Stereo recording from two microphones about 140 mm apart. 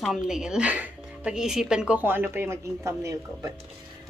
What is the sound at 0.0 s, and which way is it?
Speech, centre (ahead or behind).